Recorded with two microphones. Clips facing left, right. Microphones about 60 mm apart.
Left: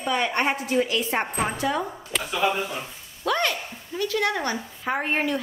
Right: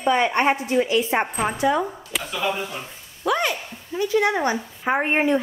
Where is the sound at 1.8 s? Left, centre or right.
Centre.